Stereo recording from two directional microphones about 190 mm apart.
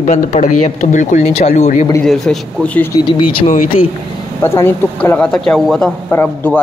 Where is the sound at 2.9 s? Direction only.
25° left (ahead or behind).